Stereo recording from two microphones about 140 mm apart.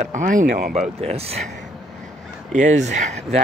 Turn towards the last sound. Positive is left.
turn(degrees=-55)  # may be behind; listen again after turning